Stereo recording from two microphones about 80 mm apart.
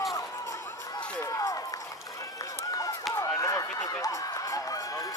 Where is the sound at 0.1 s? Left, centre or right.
Left.